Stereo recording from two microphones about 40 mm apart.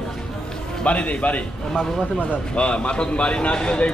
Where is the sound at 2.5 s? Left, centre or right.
Left.